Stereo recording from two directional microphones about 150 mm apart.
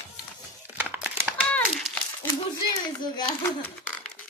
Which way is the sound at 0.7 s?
10° right (ahead or behind).